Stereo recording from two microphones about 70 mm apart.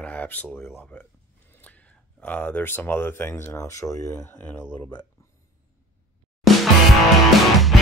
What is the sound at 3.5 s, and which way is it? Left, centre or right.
Speech, left.